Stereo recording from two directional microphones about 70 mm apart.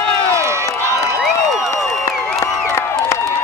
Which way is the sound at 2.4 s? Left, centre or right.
Left.